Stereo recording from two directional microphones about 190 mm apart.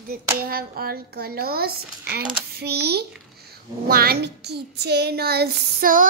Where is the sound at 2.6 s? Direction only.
60° right (ahead or behind).